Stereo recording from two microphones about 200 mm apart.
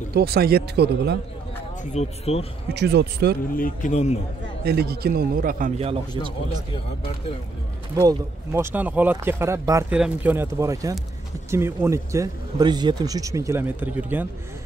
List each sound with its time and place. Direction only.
0.1 s speech: 50° right (ahead or behind)
2.0 s a man's voice: 30° left (ahead or behind)
2.7 s speech: 55° right (ahead or behind)
3.5 s a man's voice: 40° left (ahead or behind)
4.6 s speech: 50° right (ahead or behind)
7.9 s speech: 20° right (ahead or behind)